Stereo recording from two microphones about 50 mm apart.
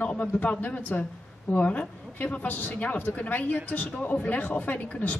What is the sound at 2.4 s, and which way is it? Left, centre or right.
A woman's voice, left.